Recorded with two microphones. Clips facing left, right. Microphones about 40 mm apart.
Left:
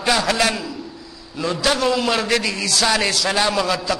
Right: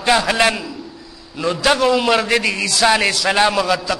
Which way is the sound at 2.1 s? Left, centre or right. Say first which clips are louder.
Right 3 dB; centre.